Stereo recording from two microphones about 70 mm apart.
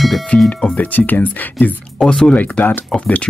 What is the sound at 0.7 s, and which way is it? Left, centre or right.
Speech, left.